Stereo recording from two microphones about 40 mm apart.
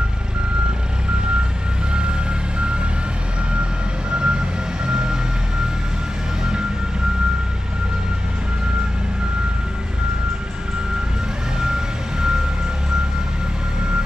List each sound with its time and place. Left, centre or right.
4.1 s vehicle: right
11.6 s vehicle: centre